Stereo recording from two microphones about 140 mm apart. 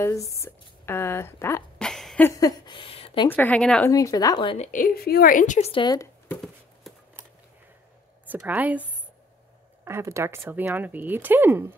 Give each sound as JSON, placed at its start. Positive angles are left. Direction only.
{"t": 0.0, "sound": "a woman's voice", "side_deg": 20}
{"t": 1.8, "sound": "a sound", "side_deg": 5}
{"t": 2.2, "sound": "a sound", "side_deg": 25}
{"t": 3.3, "sound": "speech", "side_deg": 10}
{"t": 3.8, "sound": "speech", "side_deg": 25}
{"t": 4.6, "sound": "a woman's voice", "side_deg": 75}
{"t": 5.6, "sound": "a woman's voice", "side_deg": 40}
{"t": 8.3, "sound": "speech", "side_deg": -10}
{"t": 9.8, "sound": "speech", "side_deg": -20}